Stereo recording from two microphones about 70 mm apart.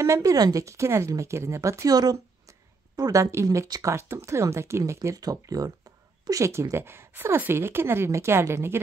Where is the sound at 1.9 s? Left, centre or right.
Right.